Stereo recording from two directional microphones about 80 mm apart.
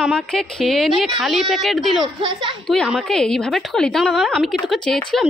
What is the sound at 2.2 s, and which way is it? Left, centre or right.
Speech, right.